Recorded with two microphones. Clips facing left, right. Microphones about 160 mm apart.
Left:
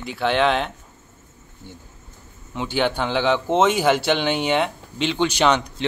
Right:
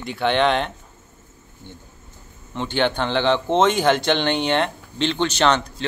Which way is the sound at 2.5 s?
5° left (ahead or behind).